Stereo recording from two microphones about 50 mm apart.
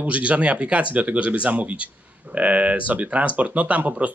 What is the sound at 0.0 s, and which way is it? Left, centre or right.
Speech, right.